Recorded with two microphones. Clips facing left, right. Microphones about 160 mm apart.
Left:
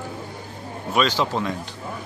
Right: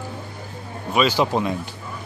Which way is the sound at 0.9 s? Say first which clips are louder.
Right 2 dB; 5° right (ahead or behind).